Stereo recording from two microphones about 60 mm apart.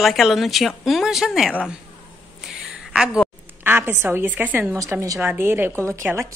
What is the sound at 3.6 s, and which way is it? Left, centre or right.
A woman's voice, right.